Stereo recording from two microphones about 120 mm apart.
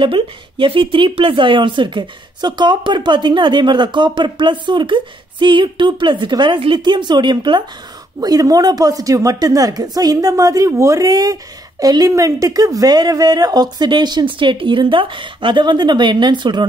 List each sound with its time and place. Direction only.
0.0 s speech: 45° right (ahead or behind)